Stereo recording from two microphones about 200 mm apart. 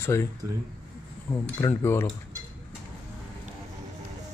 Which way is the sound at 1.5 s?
15° left (ahead or behind).